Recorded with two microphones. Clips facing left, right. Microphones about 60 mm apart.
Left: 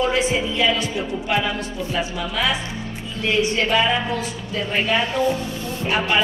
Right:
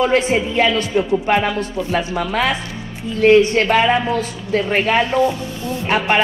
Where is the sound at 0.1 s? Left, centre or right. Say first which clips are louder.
Right 5 dB; right.